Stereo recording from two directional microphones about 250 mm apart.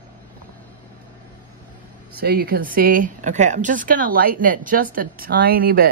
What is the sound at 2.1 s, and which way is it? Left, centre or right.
A woman's voice, right.